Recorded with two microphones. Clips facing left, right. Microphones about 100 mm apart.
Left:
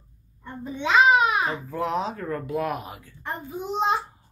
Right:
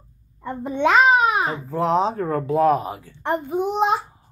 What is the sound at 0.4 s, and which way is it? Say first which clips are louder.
Speech: right 10 dB; 85° right.